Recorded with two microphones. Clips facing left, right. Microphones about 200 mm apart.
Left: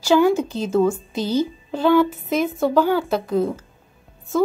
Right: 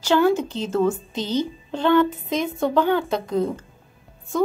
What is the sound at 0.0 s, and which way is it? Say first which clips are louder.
A woman's voice: left 2 dB; 10° left (ahead or behind).